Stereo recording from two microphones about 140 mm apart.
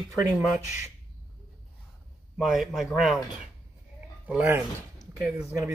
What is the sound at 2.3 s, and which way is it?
Speech, centre (ahead or behind).